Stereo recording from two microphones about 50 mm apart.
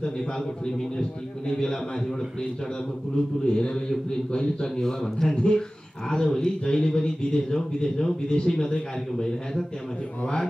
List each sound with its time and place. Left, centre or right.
1.5 s speech: centre
3.4 s speech: centre